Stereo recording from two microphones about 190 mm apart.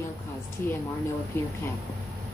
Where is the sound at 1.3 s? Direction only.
10° left (ahead or behind).